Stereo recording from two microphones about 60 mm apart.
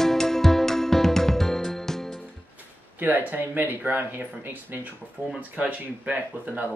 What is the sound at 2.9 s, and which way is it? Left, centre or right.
Speech, right.